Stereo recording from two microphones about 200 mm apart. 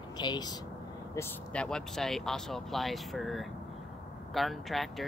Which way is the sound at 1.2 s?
5° left (ahead or behind).